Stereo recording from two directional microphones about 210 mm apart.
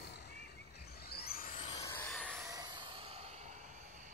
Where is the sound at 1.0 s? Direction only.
50° left (ahead or behind).